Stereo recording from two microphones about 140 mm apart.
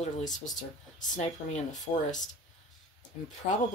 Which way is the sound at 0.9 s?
55° left (ahead or behind).